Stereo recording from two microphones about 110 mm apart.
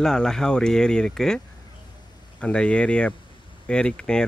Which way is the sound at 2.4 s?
10° left (ahead or behind).